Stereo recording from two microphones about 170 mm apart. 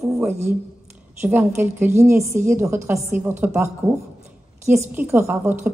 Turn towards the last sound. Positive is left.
turn(degrees=-15)  # may be behind; listen again after turning